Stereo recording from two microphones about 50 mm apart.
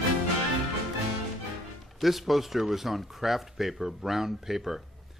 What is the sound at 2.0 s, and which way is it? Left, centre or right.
Speech, centre.